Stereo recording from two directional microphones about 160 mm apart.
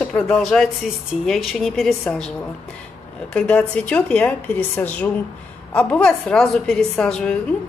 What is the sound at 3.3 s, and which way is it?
A woman's voice, 5° left (ahead or behind).